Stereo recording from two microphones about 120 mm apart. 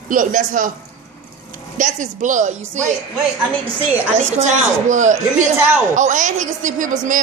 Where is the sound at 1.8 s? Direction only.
90° right.